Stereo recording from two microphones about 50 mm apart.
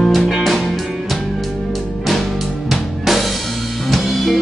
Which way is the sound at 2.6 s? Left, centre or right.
Centre.